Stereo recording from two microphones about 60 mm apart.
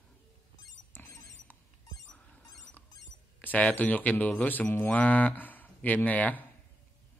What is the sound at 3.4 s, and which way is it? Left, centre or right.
Speech, left.